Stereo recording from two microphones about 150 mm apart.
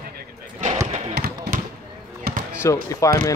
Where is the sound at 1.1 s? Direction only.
90° right.